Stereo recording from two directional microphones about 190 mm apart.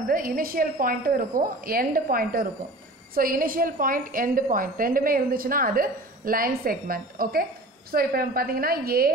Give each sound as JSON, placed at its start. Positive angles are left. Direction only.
{"t": 0.1, "sound": "a woman's voice", "side_deg": -50}